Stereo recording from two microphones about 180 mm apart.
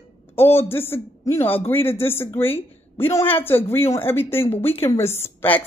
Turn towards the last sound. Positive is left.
turn(degrees=10)  # may be behind; listen again after turning